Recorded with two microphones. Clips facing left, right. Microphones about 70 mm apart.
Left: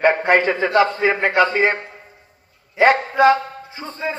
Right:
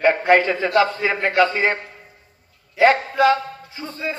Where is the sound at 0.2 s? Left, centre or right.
Left.